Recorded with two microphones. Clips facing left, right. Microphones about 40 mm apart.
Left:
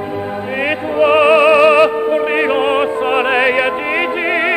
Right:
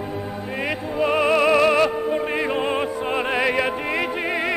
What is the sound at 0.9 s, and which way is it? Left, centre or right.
Music, left.